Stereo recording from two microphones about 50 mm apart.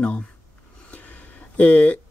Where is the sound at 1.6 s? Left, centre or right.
Left.